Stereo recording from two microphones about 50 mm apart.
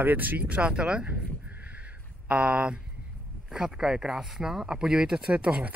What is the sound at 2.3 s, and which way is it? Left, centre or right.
Speech, right.